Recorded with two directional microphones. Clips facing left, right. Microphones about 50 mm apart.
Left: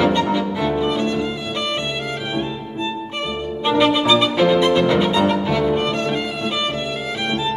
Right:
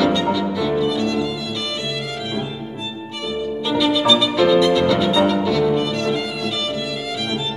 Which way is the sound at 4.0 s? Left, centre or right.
Left.